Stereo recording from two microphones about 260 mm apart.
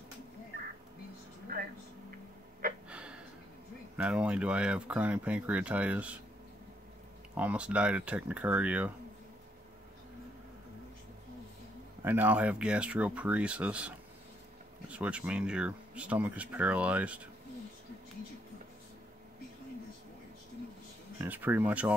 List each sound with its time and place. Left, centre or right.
1.5 s a sound: right
2.9 s a sound: centre
3.9 s speech: centre
7.3 s speech: centre
12.0 s speech: centre
21.2 s speech: centre